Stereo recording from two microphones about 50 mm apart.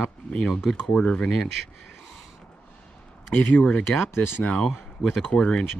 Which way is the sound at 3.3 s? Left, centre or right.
Left.